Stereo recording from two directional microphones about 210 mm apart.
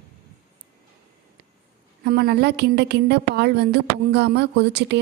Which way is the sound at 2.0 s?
50° right (ahead or behind).